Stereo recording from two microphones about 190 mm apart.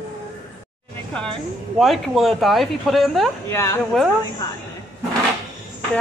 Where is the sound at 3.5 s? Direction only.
15° left (ahead or behind).